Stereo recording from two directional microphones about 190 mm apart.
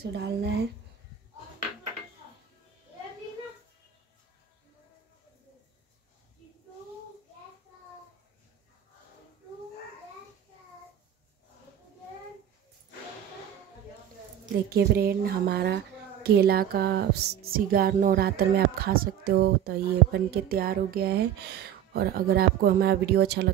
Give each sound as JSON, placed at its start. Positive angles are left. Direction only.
{"t": 0.1, "sound": "a woman's voice", "side_deg": -60}
{"t": 14.7, "sound": "a woman's voice", "side_deg": -55}